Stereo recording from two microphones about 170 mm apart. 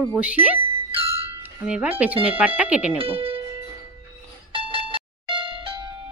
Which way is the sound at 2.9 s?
35° right (ahead or behind).